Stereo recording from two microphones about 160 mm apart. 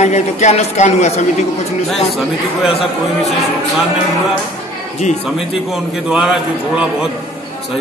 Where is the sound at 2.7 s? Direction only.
35° left (ahead or behind).